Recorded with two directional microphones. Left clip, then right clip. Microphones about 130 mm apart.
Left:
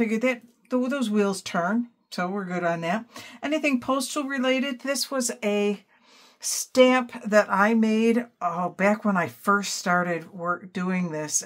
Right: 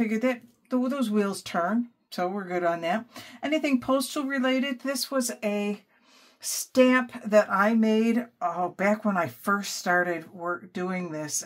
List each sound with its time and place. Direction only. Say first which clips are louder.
0.1 s speech: left 2 dB; 40° left (ahead or behind)